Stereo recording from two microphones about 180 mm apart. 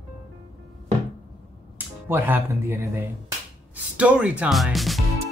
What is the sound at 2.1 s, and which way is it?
Speech, 10° right (ahead or behind).